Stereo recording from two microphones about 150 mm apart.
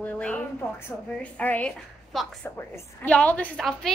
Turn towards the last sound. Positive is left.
turn(degrees=0)  # may be behind; listen again after turning